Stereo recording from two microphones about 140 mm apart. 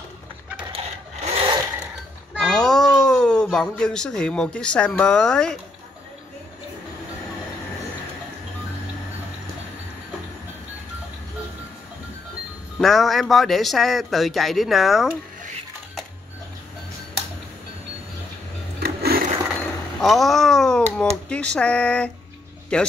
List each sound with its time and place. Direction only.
0.7 s wood: 45° right (ahead or behind)
2.3 s a sound: 5° left (ahead or behind)
3.4 s speech: 5° left (ahead or behind)
12.7 s speech: centre (ahead or behind)
18.8 s a sound: 90° right
20.0 s speech: centre (ahead or behind)